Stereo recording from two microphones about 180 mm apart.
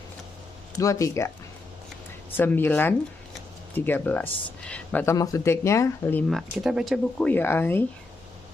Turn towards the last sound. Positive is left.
turn(degrees=10)  # may be behind; listen again after turning